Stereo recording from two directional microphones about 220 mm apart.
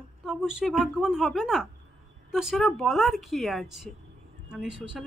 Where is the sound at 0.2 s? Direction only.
Centre (ahead or behind).